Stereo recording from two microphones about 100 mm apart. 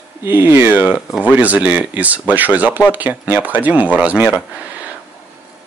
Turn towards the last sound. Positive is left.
turn(degrees=-10)  # may be behind; listen again after turning